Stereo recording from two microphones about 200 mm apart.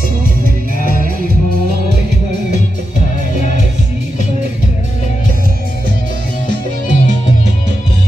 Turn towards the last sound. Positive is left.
turn(degrees=40)  # may be behind; listen again after turning